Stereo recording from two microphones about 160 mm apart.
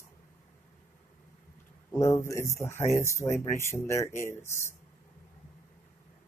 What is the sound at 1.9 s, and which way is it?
Speech, 15° left (ahead or behind).